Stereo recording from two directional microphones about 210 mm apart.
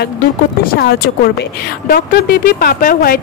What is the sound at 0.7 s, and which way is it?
Speech, 50° left (ahead or behind).